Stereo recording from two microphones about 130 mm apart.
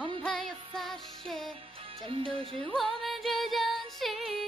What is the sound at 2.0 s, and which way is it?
Music, 45° right (ahead or behind).